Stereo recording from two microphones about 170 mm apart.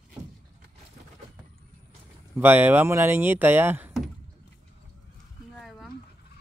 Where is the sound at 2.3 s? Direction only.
10° right (ahead or behind).